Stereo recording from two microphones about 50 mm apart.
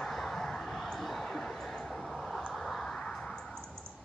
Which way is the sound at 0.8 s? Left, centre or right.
Centre.